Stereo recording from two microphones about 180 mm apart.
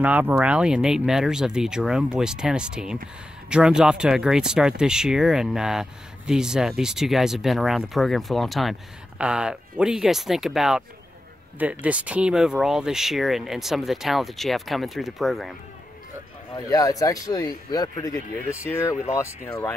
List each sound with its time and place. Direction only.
0.0 s speech: 10° right (ahead or behind)
11.8 s speech: 5° right (ahead or behind)
16.5 s speech: 20° left (ahead or behind)